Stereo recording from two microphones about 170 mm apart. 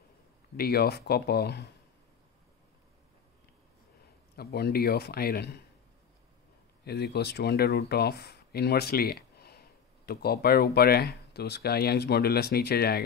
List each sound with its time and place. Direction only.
0.6 s a man's voice: 65° left (ahead or behind)
4.4 s a man's voice: 65° left (ahead or behind)
6.8 s speech: 70° left (ahead or behind)